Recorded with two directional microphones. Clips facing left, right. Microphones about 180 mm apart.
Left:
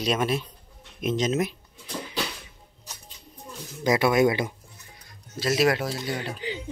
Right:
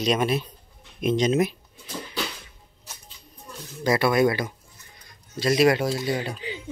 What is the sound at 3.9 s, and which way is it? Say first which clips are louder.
Speech: even; 15° left (ahead or behind).